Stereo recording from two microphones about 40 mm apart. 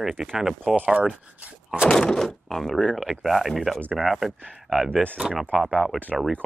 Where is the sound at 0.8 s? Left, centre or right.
Right.